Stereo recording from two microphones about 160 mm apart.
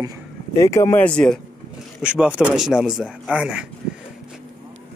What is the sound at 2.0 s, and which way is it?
Speech, 5° right (ahead or behind).